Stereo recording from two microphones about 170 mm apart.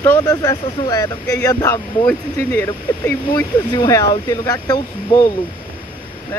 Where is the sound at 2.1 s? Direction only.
10° left (ahead or behind).